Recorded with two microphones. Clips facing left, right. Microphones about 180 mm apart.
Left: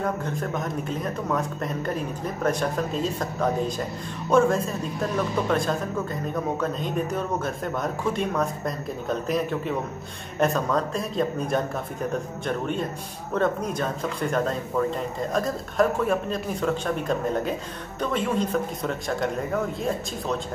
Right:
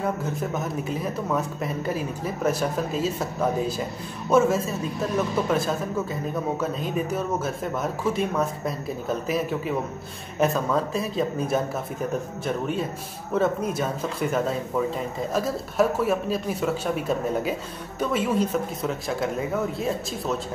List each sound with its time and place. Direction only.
0.0 s speech: 5° right (ahead or behind)